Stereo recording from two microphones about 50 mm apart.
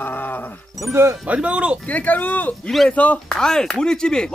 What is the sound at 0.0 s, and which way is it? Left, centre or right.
Music, left.